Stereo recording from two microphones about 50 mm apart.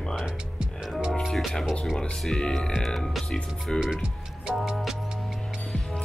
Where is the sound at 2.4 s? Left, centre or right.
Centre.